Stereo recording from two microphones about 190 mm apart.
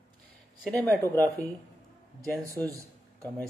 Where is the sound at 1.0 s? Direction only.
15° right (ahead or behind).